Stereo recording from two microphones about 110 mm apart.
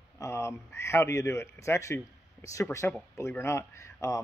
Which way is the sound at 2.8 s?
15° left (ahead or behind).